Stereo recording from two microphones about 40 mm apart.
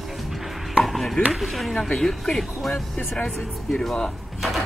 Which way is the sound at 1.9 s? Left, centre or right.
Centre.